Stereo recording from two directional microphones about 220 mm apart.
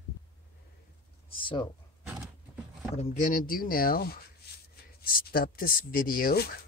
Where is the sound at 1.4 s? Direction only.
20° left (ahead or behind).